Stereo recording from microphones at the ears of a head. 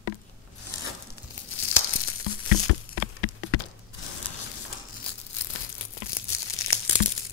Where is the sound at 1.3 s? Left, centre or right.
Left.